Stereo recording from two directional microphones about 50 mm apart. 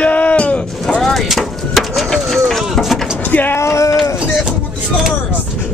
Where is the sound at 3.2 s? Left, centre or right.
Left.